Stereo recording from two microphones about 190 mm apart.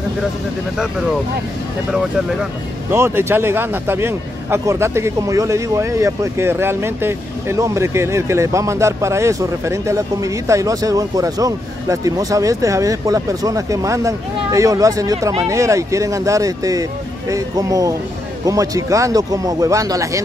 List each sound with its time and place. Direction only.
2.9 s speech: 10° right (ahead or behind)